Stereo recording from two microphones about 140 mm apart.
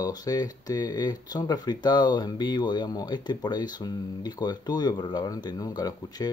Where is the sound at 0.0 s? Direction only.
25° left (ahead or behind).